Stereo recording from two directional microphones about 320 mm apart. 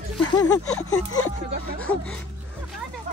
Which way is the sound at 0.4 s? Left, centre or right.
Centre.